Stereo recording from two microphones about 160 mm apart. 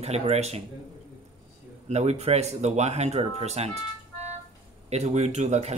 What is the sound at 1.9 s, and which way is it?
Speech, 45° right (ahead or behind).